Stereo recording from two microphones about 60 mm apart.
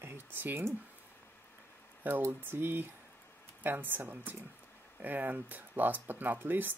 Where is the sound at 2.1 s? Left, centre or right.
Right.